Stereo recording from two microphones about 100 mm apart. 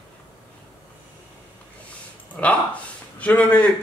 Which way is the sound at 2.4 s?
15° left (ahead or behind).